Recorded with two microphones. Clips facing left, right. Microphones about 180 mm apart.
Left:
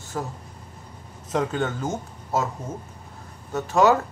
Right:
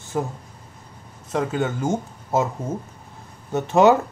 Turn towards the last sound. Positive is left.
turn(degrees=-20)  # may be behind; listen again after turning